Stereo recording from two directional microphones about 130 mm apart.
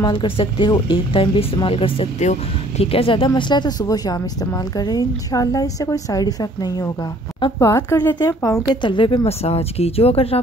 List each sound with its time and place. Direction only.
0.0 s a woman's voice: 35° left (ahead or behind); by 8.2 s 20° left (ahead or behind)
8.6 s speech: 40° left (ahead or behind)